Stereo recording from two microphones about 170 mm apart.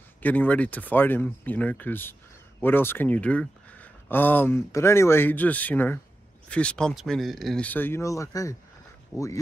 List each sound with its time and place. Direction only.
0.2 s speech: 10° left (ahead or behind)